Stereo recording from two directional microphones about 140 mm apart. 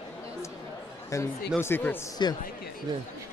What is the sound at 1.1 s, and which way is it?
A man's voice, 20° left (ahead or behind).